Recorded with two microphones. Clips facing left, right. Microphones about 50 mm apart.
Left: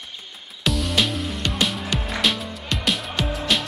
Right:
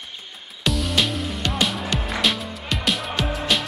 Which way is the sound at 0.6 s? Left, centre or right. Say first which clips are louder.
Even; centre.